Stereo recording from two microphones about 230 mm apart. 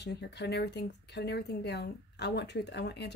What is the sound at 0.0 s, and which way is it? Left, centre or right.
Speech, left.